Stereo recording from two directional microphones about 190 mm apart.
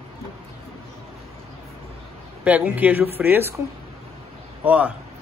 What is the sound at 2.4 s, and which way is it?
Speech, 10° right (ahead or behind).